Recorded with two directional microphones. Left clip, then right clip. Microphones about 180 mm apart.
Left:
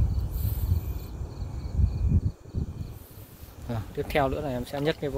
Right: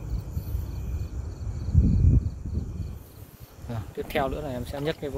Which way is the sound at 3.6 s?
25° left (ahead or behind).